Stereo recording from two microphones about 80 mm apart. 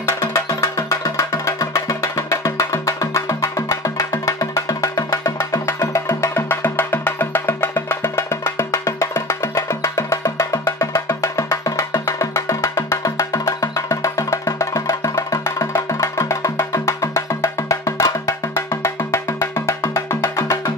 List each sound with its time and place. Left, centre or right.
0.3 s music: left